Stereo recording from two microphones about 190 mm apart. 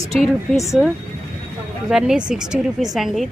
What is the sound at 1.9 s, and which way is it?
Speech, 5° right (ahead or behind).